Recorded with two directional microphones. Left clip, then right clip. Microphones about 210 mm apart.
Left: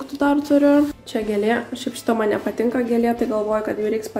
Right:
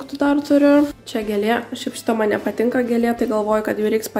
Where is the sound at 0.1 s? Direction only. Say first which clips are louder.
Right 1 dB; 10° right (ahead or behind).